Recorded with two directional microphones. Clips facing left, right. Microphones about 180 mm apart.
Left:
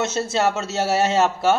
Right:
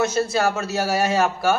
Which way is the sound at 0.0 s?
25° left (ahead or behind).